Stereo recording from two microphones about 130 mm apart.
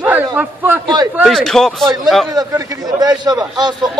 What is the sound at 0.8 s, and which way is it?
Speech, 30° right (ahead or behind).